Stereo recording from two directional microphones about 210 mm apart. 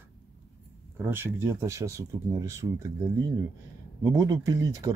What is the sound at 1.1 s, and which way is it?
Speech, 10° right (ahead or behind).